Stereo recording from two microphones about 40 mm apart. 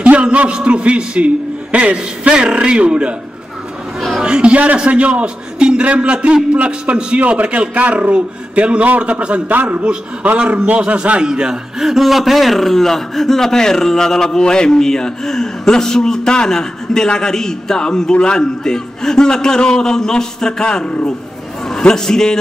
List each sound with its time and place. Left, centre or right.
0.0 s a man's voice: right
2.3 s a man's voice: right
4.2 s a man's voice: right
7.4 s a man's voice: right
7.7 s a man's voice: right
10.4 s a man's voice: right
11.8 s a man's voice: centre